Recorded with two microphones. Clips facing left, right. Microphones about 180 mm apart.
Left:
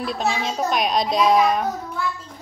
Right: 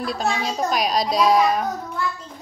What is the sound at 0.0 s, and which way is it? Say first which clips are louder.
A child's voice: even; centre (ahead or behind).